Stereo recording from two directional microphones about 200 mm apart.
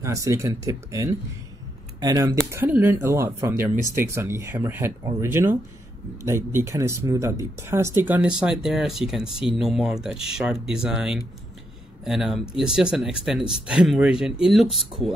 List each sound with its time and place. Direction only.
0.0 s speech: 15° right (ahead or behind)